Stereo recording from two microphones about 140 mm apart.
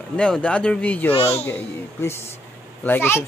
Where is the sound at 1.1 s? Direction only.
45° left (ahead or behind).